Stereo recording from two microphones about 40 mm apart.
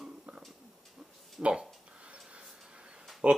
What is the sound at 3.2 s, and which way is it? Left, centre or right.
Speech, right.